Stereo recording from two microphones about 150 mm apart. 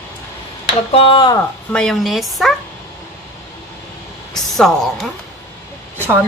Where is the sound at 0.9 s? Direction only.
35° left (ahead or behind).